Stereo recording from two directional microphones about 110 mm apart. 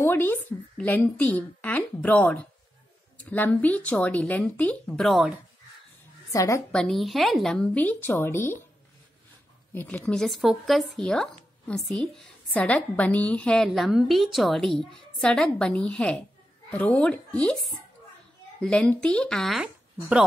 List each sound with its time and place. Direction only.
0.0 s speech: 20° left (ahead or behind)
5.0 s a woman's voice: centre (ahead or behind)
6.3 s a woman's voice: 30° left (ahead or behind)
6.7 s speech: 5° left (ahead or behind); by 8.6 s 20° left (ahead or behind)
9.7 s speech: 15° left (ahead or behind)
13.7 s a woman's voice: centre (ahead or behind)
18.6 s speech: 10° left (ahead or behind)
19.6 s speech: 10° right (ahead or behind)